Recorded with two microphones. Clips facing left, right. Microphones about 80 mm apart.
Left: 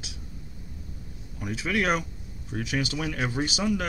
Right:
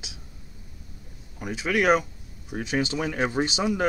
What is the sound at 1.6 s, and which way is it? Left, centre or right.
Speech, centre.